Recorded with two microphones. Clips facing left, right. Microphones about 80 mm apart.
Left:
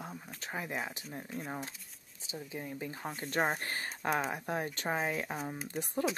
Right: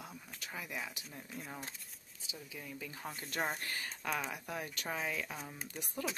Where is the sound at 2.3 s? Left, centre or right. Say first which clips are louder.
Left 7 dB; left.